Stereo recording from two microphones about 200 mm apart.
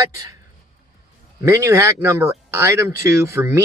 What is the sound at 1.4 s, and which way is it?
Speech, 15° right (ahead or behind).